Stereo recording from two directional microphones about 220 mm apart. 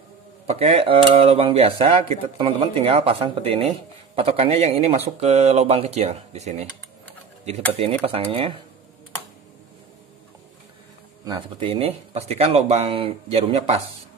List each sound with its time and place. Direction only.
0.5 s speech: 25° right (ahead or behind)
7.7 s speech: 25° right (ahead or behind)
11.2 s speech: 20° right (ahead or behind)